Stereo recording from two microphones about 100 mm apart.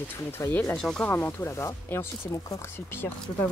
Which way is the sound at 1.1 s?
20° left (ahead or behind).